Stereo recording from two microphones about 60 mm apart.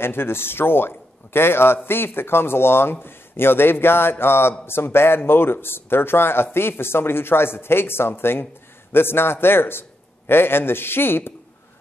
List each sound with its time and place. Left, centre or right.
0.0 s a man's voice: left